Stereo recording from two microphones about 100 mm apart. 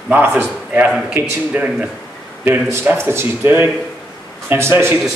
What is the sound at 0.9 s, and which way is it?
A man's voice, 5° right (ahead or behind).